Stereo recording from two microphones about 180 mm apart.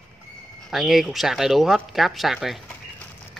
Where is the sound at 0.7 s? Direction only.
Centre (ahead or behind).